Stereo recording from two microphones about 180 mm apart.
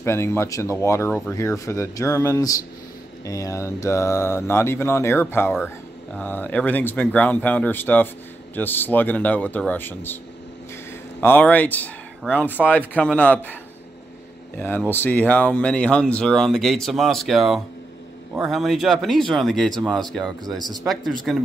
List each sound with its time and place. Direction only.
0.0 s speech: 15° left (ahead or behind)
11.1 s speech: 10° left (ahead or behind)
14.6 s speech: 10° left (ahead or behind)